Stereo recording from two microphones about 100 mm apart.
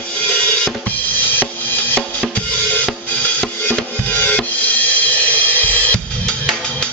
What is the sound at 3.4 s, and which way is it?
Music, 20° left (ahead or behind).